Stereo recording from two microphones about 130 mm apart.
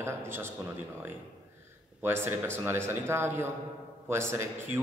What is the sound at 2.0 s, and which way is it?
A man's voice, 20° right (ahead or behind).